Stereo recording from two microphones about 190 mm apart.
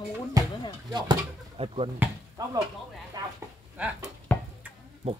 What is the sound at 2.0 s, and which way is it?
Speech, 20° right (ahead or behind).